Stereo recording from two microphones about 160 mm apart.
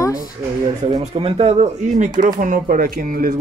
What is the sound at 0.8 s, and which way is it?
Speech, 40° right (ahead or behind).